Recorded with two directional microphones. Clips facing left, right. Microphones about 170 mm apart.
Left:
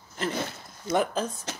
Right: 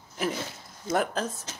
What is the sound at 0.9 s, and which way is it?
Speech, centre (ahead or behind).